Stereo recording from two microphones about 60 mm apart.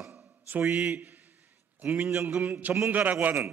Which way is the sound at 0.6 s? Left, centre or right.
Right.